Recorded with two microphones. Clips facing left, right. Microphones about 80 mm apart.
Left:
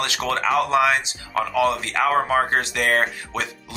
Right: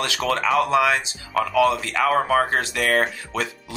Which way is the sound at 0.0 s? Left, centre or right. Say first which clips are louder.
Even; left.